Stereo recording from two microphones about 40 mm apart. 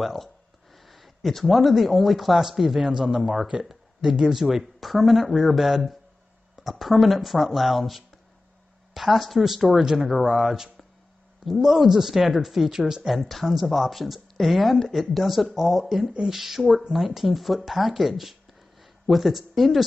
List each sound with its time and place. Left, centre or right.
0.0 s speech: centre
13.1 s speech: centre